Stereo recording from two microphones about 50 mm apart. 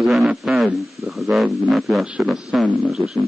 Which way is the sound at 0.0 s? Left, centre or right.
Centre.